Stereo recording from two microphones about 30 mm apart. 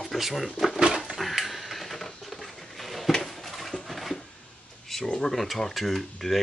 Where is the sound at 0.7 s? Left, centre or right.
Right.